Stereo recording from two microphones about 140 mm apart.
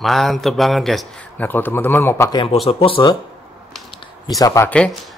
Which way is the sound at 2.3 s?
35° left (ahead or behind).